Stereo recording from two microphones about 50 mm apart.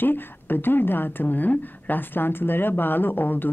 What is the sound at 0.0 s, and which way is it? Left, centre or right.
A woman's voice, left.